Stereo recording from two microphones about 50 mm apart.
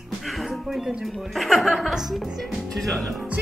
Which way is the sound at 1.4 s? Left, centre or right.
Centre.